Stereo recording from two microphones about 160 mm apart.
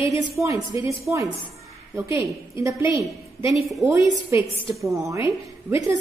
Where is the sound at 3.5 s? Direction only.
Centre (ahead or behind).